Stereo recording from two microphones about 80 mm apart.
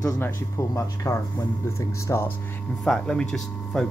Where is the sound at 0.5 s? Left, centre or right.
Left.